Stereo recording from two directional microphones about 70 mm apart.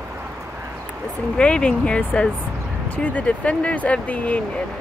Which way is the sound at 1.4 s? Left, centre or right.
Centre.